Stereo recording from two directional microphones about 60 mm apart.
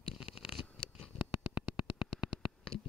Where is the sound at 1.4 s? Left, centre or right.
Centre.